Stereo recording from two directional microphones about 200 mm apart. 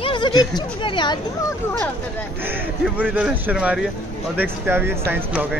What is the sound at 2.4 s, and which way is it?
A man's voice, 10° right (ahead or behind).